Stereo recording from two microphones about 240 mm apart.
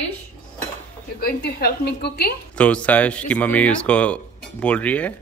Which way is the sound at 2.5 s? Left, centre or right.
Centre.